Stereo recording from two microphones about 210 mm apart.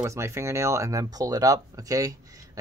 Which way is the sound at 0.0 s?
15° right (ahead or behind).